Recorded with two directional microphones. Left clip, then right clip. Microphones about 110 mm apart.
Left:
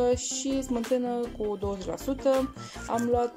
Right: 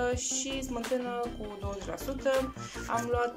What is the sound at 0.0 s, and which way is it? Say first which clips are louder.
Music: left 5 dB; 50° left (ahead or behind).